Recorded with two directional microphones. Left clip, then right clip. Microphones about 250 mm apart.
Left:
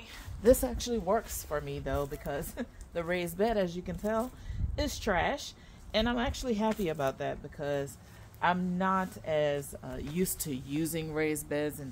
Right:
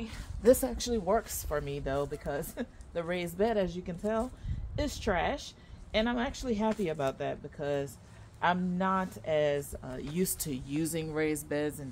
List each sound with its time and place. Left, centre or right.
0.0 s a woman's voice: centre